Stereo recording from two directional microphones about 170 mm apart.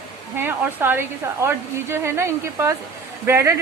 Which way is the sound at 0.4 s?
10° right (ahead or behind).